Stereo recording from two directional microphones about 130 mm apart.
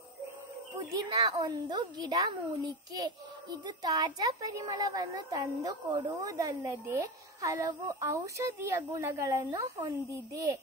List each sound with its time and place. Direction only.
0.7 s a woman's voice: 30° right (ahead or behind)
3.6 s speech: 30° right (ahead or behind)